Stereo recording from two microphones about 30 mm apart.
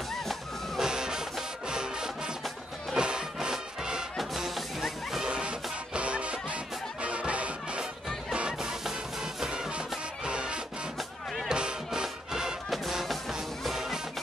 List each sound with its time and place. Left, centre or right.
0.7 s music: right
5.9 s music: right
10.2 s music: right
12.6 s music: centre